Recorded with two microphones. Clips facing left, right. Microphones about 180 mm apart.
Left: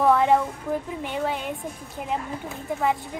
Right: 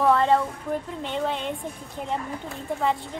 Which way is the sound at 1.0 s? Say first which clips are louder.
Even; 10° left (ahead or behind).